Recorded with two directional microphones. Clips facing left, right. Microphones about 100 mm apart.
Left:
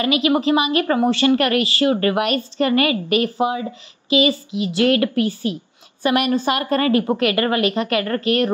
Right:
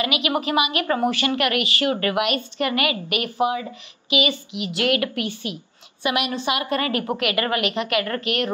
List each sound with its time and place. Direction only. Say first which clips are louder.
0.0 s a woman's voice: left 6 dB; 35° left (ahead or behind)